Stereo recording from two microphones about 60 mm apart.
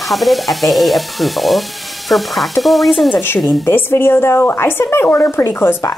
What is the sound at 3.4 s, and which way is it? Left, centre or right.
A woman's voice, left.